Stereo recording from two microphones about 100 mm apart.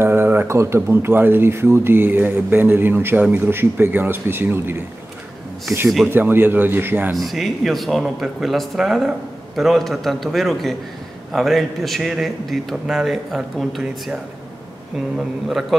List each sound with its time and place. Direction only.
0.0 s speech: 20° right (ahead or behind)
6.0 s speech: 20° right (ahead or behind)
7.2 s a man's voice: centre (ahead or behind)
15.1 s a man's voice: 5° right (ahead or behind)